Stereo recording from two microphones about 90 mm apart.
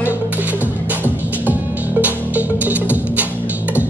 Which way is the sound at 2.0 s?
15° right (ahead or behind).